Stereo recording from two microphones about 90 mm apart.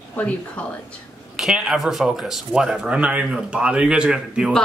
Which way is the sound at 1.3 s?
5° right (ahead or behind).